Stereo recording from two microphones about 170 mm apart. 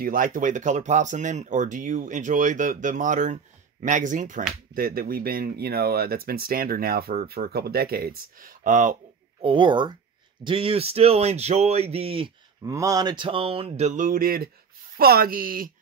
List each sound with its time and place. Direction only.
0.0 s speech: 55° right (ahead or behind)
9.4 s speech: 30° right (ahead or behind)
12.6 s speech: 20° right (ahead or behind); by 15.7 s 55° right (ahead or behind)